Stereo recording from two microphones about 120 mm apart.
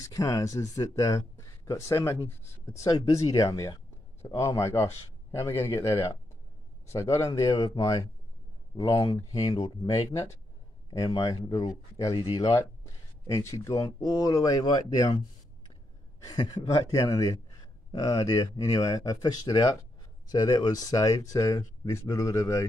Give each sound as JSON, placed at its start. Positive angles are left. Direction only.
{"t": 0.0, "sound": "speech", "side_deg": 30}
{"t": 16.3, "sound": "speech", "side_deg": 35}